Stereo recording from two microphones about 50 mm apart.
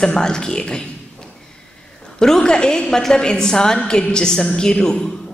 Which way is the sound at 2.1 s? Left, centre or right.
Centre.